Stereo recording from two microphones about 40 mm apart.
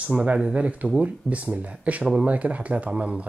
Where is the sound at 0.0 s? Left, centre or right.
Right.